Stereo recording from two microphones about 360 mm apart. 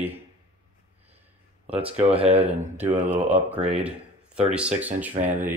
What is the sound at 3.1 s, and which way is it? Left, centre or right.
Speech, centre.